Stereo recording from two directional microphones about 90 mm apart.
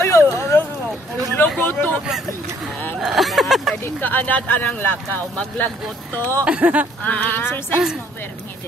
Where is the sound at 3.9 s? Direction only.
20° left (ahead or behind).